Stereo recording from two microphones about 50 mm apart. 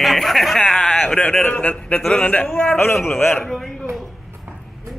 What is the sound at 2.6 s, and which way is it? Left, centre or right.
Speech, left.